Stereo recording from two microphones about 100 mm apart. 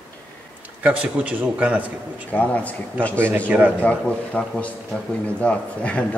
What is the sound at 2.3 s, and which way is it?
Speech, 15° left (ahead or behind).